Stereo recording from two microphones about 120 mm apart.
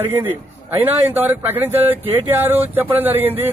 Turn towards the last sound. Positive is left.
turn(degrees=-15)  # may be behind; listen again after turning